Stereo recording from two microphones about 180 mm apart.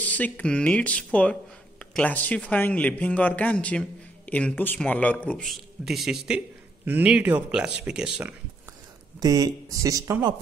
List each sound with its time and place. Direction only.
0.0 s speech: 10° left (ahead or behind)
9.2 s speech: 20° right (ahead or behind)